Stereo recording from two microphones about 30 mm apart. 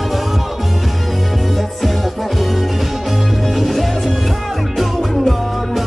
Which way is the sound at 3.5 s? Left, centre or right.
Centre.